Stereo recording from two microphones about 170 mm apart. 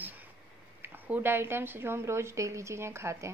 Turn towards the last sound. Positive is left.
turn(degrees=-15)  # may be behind; listen again after turning